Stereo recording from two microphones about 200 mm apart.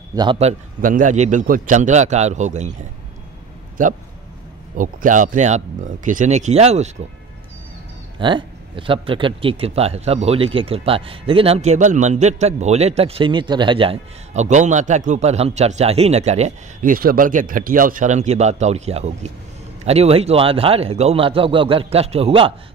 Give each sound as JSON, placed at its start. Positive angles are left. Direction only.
{"t": 0.1, "sound": "a man's voice", "side_deg": -20}
{"t": 0.4, "sound": "speech", "side_deg": -40}
{"t": 4.7, "sound": "speech", "side_deg": -40}
{"t": 8.2, "sound": "a man's voice", "side_deg": -25}